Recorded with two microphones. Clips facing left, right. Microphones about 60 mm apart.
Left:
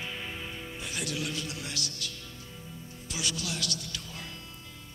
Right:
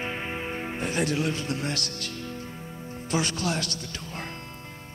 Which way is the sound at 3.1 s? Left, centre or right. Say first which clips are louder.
Right 8 dB; right.